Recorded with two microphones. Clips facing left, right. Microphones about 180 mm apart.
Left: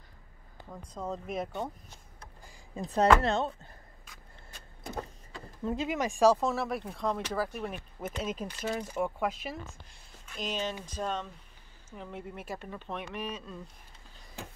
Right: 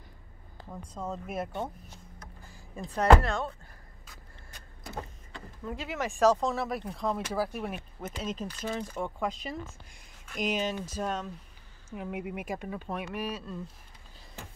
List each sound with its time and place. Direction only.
0.7 s speech: centre (ahead or behind)
2.5 s a sound: 20° left (ahead or behind)
3.2 s speech: 25° left (ahead or behind)
5.6 s speech: 25° left (ahead or behind); by 7.7 s 10° right (ahead or behind)
8.2 s speech: 10° left (ahead or behind)
10.3 s speech: 10° right (ahead or behind)